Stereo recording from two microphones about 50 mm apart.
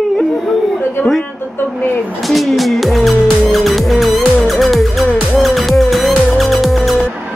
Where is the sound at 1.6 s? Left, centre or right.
Left.